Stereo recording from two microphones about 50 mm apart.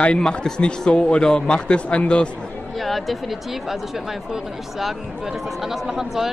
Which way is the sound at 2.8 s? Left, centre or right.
Centre.